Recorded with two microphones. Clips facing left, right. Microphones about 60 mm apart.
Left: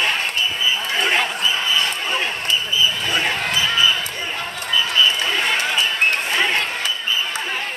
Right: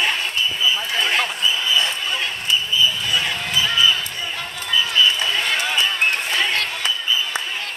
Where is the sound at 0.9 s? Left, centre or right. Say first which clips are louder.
Left 2 dB; left.